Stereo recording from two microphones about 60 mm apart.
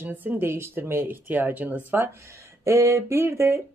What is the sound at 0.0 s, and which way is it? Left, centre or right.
Speech, right.